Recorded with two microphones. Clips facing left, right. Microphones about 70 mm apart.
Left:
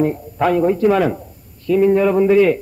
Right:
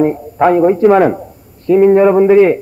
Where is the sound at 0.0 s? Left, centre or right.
Right.